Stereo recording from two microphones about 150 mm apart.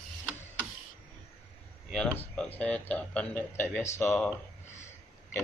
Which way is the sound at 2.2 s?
10° left (ahead or behind).